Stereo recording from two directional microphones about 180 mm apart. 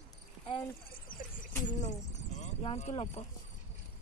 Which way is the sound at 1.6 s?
40° left (ahead or behind).